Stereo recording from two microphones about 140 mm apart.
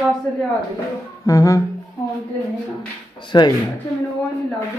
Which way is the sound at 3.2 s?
30° left (ahead or behind).